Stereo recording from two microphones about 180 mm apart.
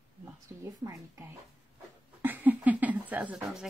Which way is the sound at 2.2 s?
10° right (ahead or behind).